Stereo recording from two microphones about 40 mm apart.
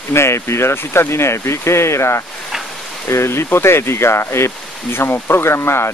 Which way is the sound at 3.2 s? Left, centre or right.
Left.